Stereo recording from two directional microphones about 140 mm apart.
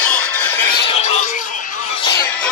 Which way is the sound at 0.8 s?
50° left (ahead or behind).